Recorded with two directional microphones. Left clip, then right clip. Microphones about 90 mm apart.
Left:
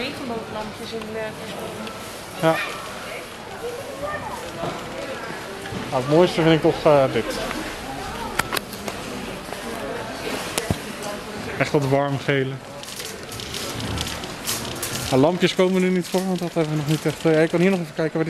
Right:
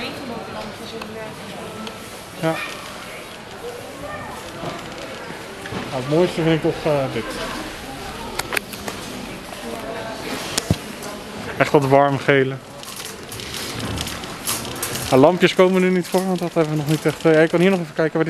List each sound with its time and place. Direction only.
2.4 s speech: 20° left (ahead or behind)
5.9 s speech: 20° left (ahead or behind)
7.2 s speech: 20° right (ahead or behind)
11.6 s speech: 20° right (ahead or behind)
12.0 s speech: 40° right (ahead or behind)
13.7 s rain: 20° right (ahead or behind)
14.5 s speech: 20° right (ahead or behind)